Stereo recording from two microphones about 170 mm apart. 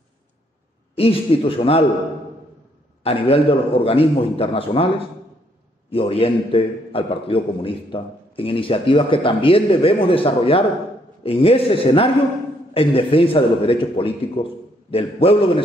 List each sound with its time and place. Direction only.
0.9 s a man's voice: 35° left (ahead or behind)
3.0 s a man's voice: 35° left (ahead or behind)
5.9 s a man's voice: 35° left (ahead or behind)